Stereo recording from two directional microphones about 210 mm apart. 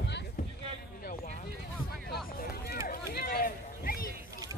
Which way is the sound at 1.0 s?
45° left (ahead or behind).